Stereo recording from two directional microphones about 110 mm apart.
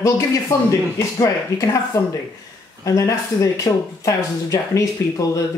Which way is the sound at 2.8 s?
30° left (ahead or behind).